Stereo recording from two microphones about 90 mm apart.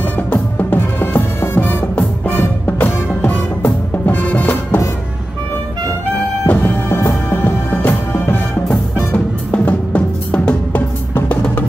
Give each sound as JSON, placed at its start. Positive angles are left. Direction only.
{"t": 0.3, "sound": "music", "side_deg": 20}
{"t": 6.4, "sound": "music", "side_deg": 20}